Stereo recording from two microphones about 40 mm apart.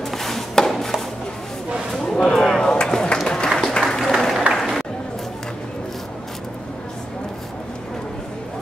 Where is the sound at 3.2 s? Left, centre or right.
Centre.